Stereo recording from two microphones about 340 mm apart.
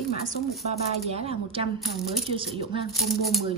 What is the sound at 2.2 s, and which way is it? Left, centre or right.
Speech, centre.